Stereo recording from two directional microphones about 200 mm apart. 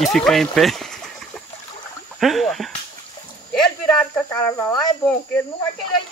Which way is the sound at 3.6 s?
5° left (ahead or behind).